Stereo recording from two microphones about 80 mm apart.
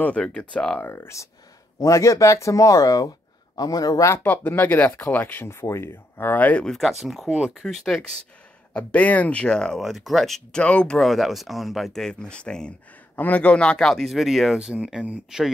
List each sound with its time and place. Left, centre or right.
0.2 s speech: centre
0.8 s speech: left
4.1 s speech: left
6.7 s speech: centre
7.2 s speech: centre
7.6 s speech: centre
8.7 s speech: centre
9.8 s speech: centre
10.6 s speech: centre
11.1 s speech: centre